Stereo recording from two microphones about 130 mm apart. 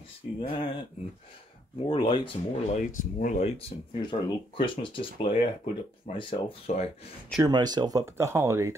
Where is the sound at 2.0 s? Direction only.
35° left (ahead or behind).